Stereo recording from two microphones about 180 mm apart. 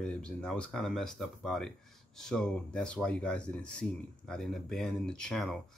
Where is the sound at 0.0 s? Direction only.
5° left (ahead or behind).